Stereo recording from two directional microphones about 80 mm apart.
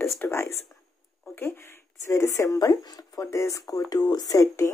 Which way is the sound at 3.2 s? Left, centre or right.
Left.